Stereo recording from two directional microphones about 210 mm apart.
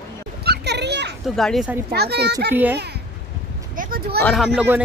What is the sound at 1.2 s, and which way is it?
Speech, centre (ahead or behind).